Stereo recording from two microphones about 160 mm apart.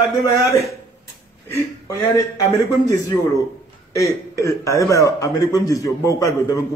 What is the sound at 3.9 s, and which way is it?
A man's voice, 20° left (ahead or behind).